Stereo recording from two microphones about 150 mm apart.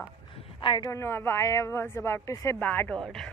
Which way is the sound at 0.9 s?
15° left (ahead or behind).